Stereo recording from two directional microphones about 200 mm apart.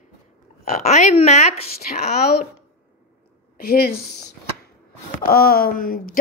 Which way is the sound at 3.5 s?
50° left (ahead or behind).